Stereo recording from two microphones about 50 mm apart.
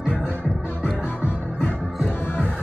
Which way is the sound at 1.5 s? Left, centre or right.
Centre.